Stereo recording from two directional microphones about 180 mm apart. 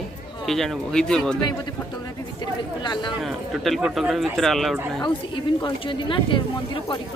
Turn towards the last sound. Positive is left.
turn(degrees=30)  # may be behind; listen again after turning